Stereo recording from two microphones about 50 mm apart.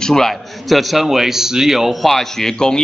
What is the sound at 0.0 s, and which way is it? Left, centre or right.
A man's voice, centre.